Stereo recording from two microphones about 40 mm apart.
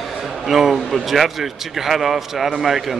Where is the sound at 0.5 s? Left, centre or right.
Centre.